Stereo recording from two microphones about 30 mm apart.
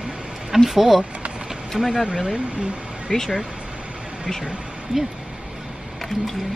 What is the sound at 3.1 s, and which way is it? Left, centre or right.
Speech, centre.